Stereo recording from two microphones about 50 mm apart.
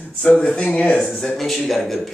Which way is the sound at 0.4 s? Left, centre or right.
Left.